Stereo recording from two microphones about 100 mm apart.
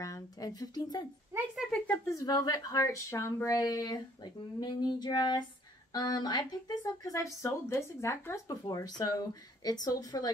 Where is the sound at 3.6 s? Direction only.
40° left (ahead or behind).